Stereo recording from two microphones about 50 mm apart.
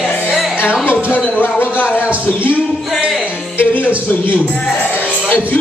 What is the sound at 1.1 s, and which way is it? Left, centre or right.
Speech, left.